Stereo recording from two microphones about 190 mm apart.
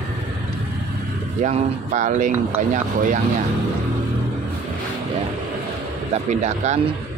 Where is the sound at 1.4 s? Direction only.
40° right (ahead or behind).